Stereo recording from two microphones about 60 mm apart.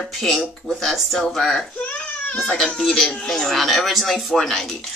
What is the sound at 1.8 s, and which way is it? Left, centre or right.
Baby cry, left.